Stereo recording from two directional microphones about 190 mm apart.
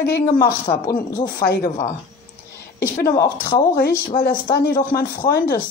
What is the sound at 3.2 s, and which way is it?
Speech, 50° left (ahead or behind).